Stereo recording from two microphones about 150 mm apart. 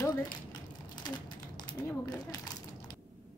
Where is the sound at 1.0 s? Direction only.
30° left (ahead or behind).